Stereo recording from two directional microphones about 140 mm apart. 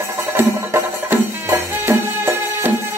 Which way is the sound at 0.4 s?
20° right (ahead or behind).